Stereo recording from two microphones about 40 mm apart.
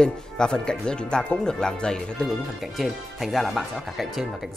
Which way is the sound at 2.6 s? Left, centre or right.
Centre.